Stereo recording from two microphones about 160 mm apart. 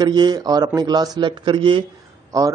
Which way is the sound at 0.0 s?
25° right (ahead or behind).